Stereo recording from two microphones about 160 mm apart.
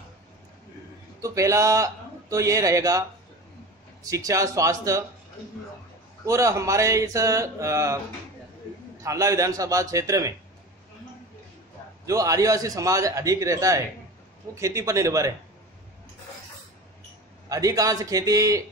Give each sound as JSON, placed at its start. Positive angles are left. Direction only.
{"t": 1.2, "sound": "a man's voice", "side_deg": -20}
{"t": 6.2, "sound": "a man's voice", "side_deg": -20}
{"t": 9.0, "sound": "a man's voice", "side_deg": -20}
{"t": 12.1, "sound": "a man's voice", "side_deg": -20}
{"t": 17.5, "sound": "a man's voice", "side_deg": -20}